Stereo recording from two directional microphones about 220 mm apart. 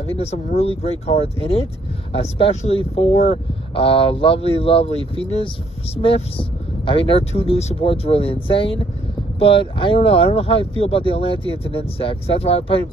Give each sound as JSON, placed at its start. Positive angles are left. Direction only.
{"t": 0.0, "sound": "speech", "side_deg": 25}